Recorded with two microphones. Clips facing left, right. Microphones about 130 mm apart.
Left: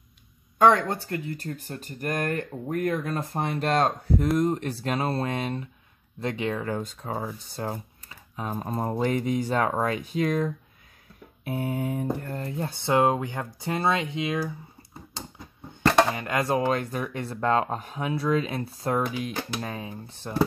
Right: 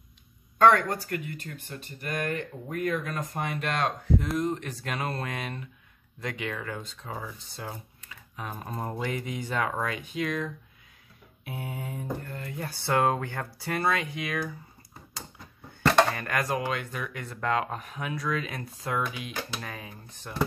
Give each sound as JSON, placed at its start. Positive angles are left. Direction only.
{"t": 0.6, "sound": "speech", "side_deg": 20}
{"t": 6.8, "sound": "mantra", "side_deg": 45}
{"t": 7.1, "sound": "speech", "side_deg": 40}
{"t": 11.4, "sound": "mantra", "side_deg": 50}
{"t": 12.3, "sound": "speech", "side_deg": 40}
{"t": 12.5, "sound": "speech", "side_deg": 20}
{"t": 15.1, "sound": "a sound", "side_deg": 20}
{"t": 15.8, "sound": "a sound", "side_deg": 0}
{"t": 16.1, "sound": "speech", "side_deg": 20}
{"t": 16.6, "sound": "speech", "side_deg": 40}